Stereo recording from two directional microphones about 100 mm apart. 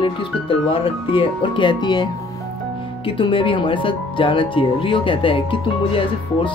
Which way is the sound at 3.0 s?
60° left (ahead or behind).